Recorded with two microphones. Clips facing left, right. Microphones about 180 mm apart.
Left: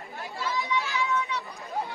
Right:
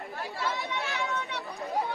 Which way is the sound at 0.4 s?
60° right (ahead or behind).